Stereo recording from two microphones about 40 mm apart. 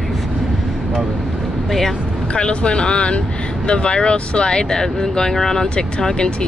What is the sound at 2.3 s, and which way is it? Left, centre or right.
Speech, left.